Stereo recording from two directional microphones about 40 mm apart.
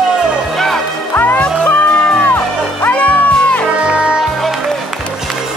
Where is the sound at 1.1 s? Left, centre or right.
Left.